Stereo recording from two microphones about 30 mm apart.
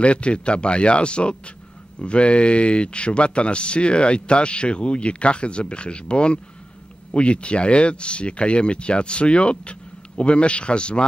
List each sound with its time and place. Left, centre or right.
0.0 s speech: left